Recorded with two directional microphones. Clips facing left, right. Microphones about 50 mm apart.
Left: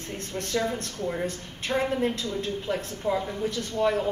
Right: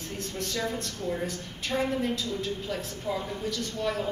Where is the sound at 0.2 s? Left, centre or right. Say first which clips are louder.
Left 4 dB; left.